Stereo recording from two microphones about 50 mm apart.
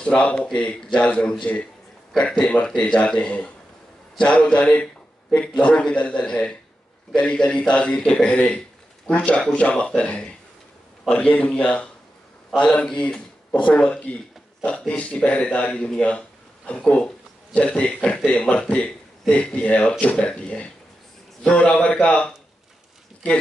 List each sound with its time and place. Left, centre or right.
0.0 s a man's voice: left
11.1 s a man's voice: left